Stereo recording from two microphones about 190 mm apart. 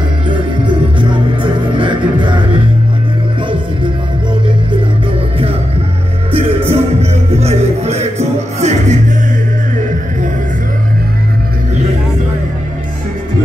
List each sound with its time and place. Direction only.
0.3 s music: 25° right (ahead or behind)
6.3 s music: 30° right (ahead or behind)